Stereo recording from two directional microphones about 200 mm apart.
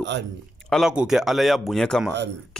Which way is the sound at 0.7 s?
Centre (ahead or behind).